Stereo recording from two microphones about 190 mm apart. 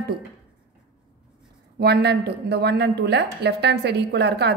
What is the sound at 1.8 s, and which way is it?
A woman's voice, 60° right (ahead or behind).